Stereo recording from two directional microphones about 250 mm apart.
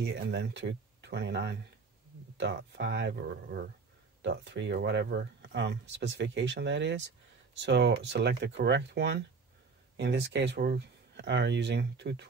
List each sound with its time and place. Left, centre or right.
0.0 s speech: right